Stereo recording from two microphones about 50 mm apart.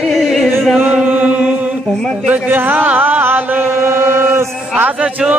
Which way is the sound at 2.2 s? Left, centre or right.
Right.